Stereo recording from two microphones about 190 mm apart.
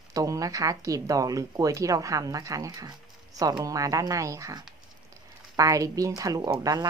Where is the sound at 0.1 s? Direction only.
20° right (ahead or behind).